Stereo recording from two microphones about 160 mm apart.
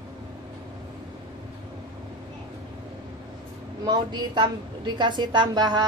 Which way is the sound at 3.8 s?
30° right (ahead or behind).